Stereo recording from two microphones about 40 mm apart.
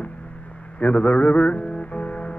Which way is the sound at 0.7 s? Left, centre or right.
Left.